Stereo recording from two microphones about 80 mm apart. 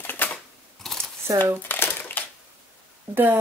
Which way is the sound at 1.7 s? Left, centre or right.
Left.